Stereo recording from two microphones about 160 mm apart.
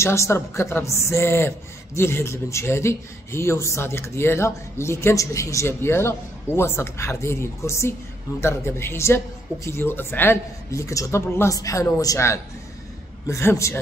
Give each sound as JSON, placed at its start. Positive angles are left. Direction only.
{"t": 0.0, "sound": "speech", "side_deg": 15}